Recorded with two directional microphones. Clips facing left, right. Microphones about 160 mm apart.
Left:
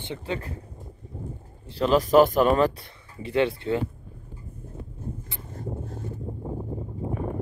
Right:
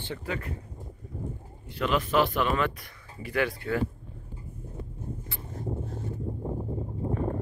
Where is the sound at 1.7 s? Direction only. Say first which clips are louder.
Left 7 dB; 35° left (ahead or behind).